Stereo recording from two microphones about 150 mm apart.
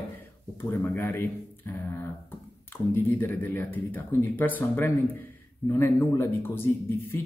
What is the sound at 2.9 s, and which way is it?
Speech, 10° left (ahead or behind).